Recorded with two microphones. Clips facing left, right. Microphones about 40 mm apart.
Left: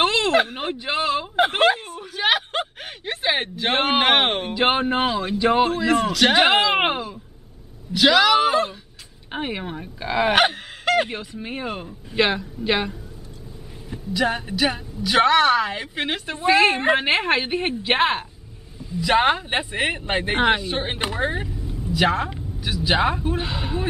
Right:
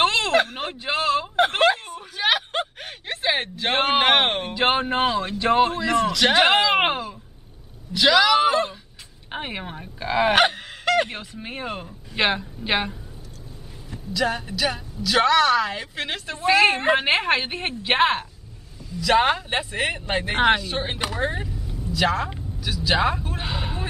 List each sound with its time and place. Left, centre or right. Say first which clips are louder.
0.0 s a sound: left 1 dB; centre
5.4 s a woman's voice: left 1 dB; centre
12.2 s a woman's voice: left 2 dB; centre
13.8 s speech: left 2 dB; centre
16.4 s a woman's voice: left 1 dB; centre
18.8 s speech: even; left
23.4 s a woman's voice: left 3 dB; centre